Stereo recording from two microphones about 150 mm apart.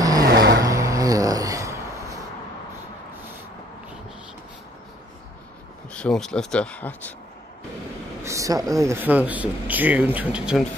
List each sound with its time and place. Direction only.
0.0 s vehicle: 25° right (ahead or behind)
0.6 s a sound: 20° right (ahead or behind)
5.9 s speech: 5° left (ahead or behind)
8.2 s speech: 20° right (ahead or behind)